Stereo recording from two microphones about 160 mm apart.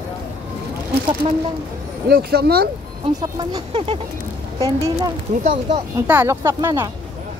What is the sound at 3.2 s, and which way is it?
Speech, 30° right (ahead or behind).